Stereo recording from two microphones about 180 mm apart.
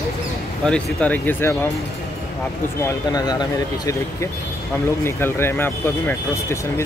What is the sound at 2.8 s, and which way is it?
Speech, 20° left (ahead or behind).